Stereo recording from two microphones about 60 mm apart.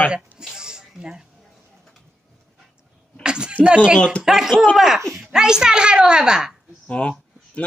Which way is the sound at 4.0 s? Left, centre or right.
Centre.